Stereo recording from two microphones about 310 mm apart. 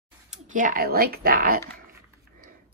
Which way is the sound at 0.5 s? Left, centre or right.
Right.